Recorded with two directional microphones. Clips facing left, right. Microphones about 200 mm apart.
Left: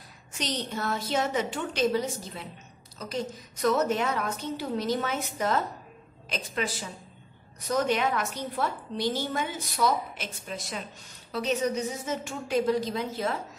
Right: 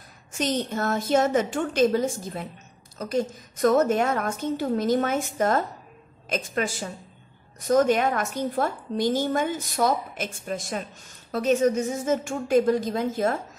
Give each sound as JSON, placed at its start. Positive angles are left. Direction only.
{"t": 0.3, "sound": "a woman's voice", "side_deg": -50}